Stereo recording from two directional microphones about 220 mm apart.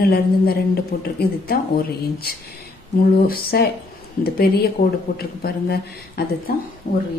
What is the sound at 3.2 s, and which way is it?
A woman's voice, 45° left (ahead or behind).